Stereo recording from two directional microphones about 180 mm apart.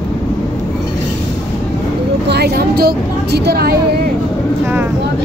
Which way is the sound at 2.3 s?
60° right (ahead or behind).